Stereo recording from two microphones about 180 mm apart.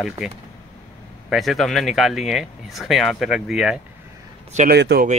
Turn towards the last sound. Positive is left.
turn(degrees=-65)  # may be behind; listen again after turning